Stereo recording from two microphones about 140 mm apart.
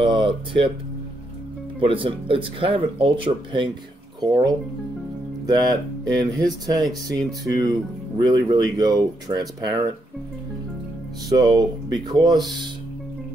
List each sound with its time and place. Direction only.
0.0 s speech: 35° right (ahead or behind)
1.8 s speech: 40° right (ahead or behind)
8.3 s speech: 30° right (ahead or behind)
11.2 s speech: 30° right (ahead or behind)